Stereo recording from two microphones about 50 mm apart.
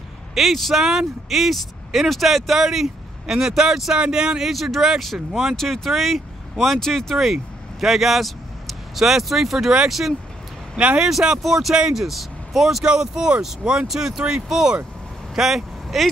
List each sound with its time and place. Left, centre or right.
0.3 s speech: centre
5.6 s speech: centre
7.8 s speech: centre
10.8 s speech: right
11.1 s speech: centre
12.8 s speech: centre
15.3 s vehicle: centre